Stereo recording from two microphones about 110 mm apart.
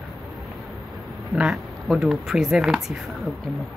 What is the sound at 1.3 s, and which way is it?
Speech, 10° right (ahead or behind).